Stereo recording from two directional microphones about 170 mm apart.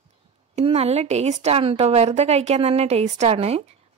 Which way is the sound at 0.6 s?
40° right (ahead or behind).